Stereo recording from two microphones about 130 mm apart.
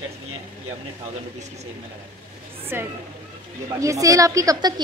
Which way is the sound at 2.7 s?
15° right (ahead or behind).